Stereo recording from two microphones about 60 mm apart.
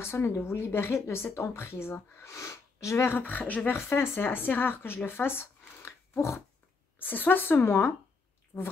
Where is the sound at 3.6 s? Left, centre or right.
Left.